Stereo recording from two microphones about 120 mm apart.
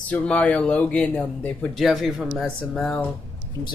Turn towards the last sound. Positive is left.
turn(degrees=10)  # may be behind; listen again after turning